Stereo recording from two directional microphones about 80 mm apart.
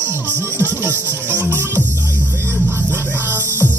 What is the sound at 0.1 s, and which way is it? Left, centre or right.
Music, right.